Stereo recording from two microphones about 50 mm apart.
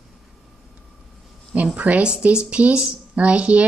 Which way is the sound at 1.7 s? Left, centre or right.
Right.